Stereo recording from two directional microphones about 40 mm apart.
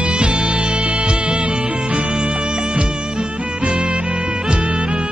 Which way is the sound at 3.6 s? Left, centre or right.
Right.